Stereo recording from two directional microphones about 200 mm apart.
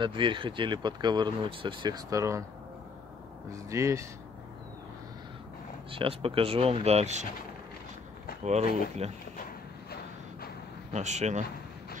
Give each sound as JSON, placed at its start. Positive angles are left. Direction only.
{"t": 0.0, "sound": "speech", "side_deg": -25}
{"t": 3.5, "sound": "speech", "side_deg": -15}
{"t": 5.9, "sound": "speech", "side_deg": -25}
{"t": 8.5, "sound": "speech", "side_deg": -35}
{"t": 10.9, "sound": "speech", "side_deg": -35}